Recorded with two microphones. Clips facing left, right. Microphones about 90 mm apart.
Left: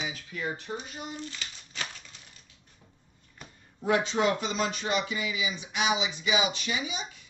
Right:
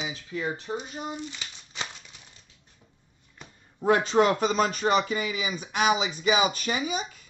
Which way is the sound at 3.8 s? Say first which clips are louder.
Right 4 dB; 45° right (ahead or behind).